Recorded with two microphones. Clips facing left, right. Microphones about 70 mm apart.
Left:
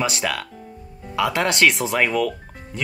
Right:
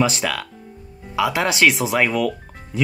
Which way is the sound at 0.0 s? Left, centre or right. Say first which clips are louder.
Right 3 dB; centre.